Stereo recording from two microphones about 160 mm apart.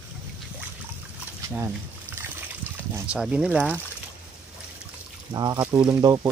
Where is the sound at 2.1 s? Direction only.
10° left (ahead or behind).